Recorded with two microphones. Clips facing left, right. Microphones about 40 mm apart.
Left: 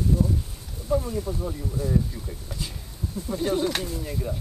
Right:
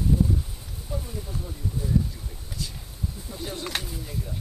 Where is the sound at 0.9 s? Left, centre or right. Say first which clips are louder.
Left 11 dB; centre.